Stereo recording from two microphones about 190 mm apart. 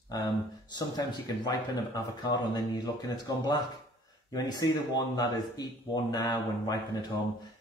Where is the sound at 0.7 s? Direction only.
20° left (ahead or behind).